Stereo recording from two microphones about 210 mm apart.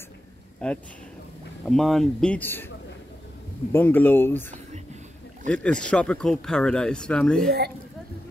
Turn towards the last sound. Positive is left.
turn(degrees=5)  # may be behind; listen again after turning